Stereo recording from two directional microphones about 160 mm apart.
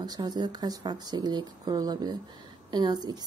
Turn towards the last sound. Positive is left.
turn(degrees=-25)  # may be behind; listen again after turning